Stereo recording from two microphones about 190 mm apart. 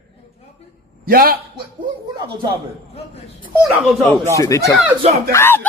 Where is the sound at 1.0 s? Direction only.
50° right (ahead or behind).